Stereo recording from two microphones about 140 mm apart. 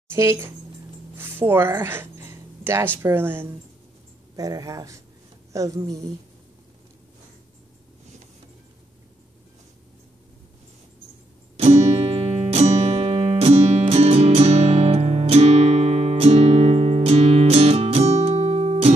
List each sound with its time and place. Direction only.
0.1 s speech: 15° right (ahead or behind)
1.1 s a sound: 15° right (ahead or behind)
3.0 s speech: 15° right (ahead or behind)
4.4 s speech: 25° right (ahead or behind)
11.5 s music: 50° right (ahead or behind)